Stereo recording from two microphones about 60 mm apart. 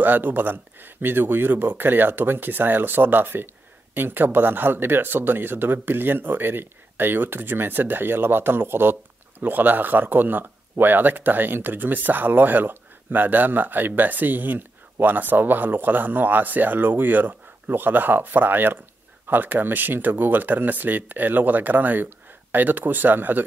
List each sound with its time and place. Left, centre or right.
0.0 s speech: right